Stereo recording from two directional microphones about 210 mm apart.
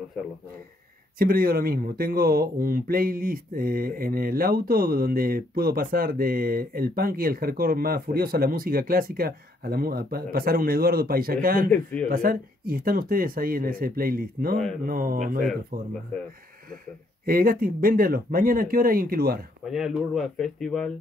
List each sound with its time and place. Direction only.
1.1 s speech: 45° right (ahead or behind)
11.7 s speech: 5° left (ahead or behind)
12.1 s speech: 45° right (ahead or behind)
17.3 s speech: 45° right (ahead or behind)
19.6 s speech: centre (ahead or behind)